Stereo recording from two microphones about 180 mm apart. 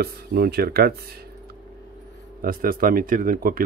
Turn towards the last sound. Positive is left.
turn(degrees=-50)  # may be behind; listen again after turning